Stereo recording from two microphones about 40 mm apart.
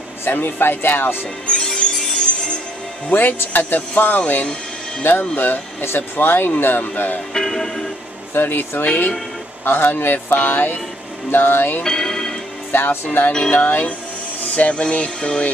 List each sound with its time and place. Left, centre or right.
0.2 s speech: left
1.5 s music: centre
3.1 s speech: left
5.1 s speech: left
5.4 s speech: left
7.3 s music: centre
8.4 s speech: left
8.8 s speech: left
9.7 s speech: left
11.8 s music: centre
12.7 s speech: left
14.4 s music: left